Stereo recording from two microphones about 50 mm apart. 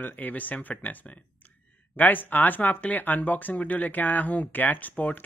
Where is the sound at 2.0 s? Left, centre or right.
Left.